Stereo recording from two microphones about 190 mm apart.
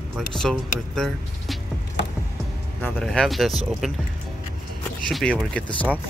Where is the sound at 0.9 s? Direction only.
Centre (ahead or behind).